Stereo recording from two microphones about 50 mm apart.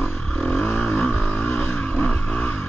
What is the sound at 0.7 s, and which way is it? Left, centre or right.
Vehicle, centre.